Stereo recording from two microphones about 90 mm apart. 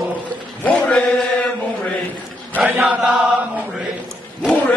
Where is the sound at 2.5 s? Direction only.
20° right (ahead or behind).